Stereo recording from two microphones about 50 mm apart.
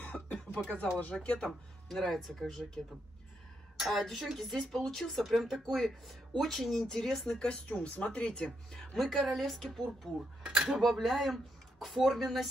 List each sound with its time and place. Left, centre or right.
0.0 s cough: left
0.9 s speech: left
1.5 s speech: centre
3.9 s speech: centre
9.1 s speech: centre